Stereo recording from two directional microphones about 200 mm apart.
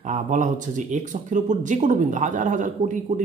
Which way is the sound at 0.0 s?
40° right (ahead or behind).